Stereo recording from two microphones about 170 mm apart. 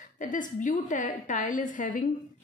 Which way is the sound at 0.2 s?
50° left (ahead or behind).